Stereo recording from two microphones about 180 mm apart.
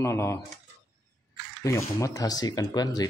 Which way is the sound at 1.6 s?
15° left (ahead or behind).